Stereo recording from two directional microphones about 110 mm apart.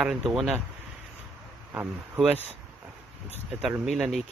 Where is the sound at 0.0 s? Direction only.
5° right (ahead or behind).